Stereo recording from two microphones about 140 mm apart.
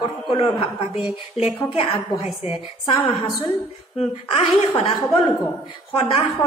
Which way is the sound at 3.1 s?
Centre (ahead or behind).